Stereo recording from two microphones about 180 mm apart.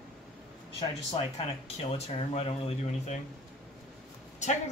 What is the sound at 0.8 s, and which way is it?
Speech, 30° left (ahead or behind).